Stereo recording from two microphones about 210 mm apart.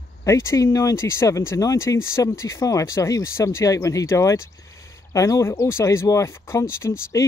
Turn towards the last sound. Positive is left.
turn(degrees=15)  # may be behind; listen again after turning